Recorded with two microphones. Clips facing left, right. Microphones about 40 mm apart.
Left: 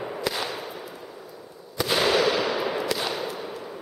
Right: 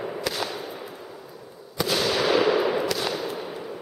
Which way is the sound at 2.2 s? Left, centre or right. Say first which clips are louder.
Right 4 dB; centre.